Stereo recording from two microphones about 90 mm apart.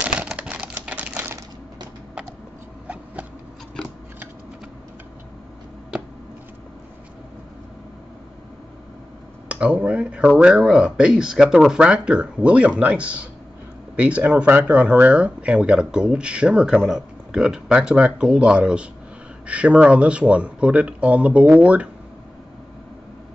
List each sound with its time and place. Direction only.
0.0 s typewriter: 15° right (ahead or behind)
5.9 s a sound: 10° right (ahead or behind)
9.5 s speech: 15° right (ahead or behind)